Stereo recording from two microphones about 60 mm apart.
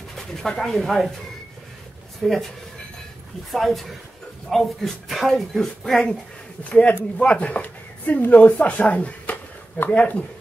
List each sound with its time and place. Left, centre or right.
0.1 s speech: centre
2.2 s speech: centre
3.5 s speech: centre
6.6 s speech: centre